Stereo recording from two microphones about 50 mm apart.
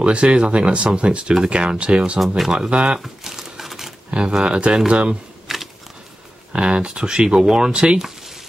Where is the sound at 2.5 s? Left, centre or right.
Centre.